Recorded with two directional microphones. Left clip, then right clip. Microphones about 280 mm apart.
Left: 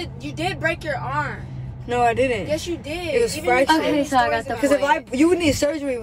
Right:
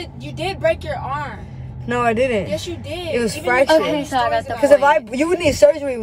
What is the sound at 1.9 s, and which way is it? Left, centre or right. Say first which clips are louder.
Speech: right 1 dB; centre.